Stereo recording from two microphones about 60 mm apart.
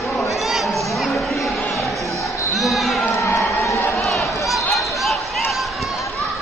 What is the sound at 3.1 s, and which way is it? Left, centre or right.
Crowd, left.